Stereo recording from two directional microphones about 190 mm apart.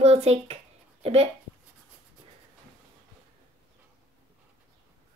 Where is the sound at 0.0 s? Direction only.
30° right (ahead or behind).